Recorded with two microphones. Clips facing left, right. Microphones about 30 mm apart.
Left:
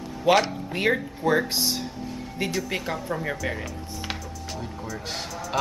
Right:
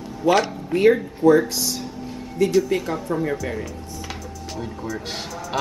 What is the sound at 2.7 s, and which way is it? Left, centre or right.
Speech, centre.